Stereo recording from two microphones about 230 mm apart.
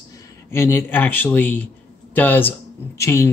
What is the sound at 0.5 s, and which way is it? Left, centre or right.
Speech, centre.